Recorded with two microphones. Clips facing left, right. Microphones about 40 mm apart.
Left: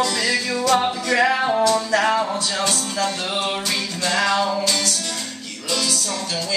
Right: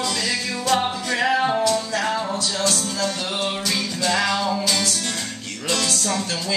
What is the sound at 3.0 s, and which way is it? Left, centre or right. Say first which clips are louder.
Music: left 1 dB; centre.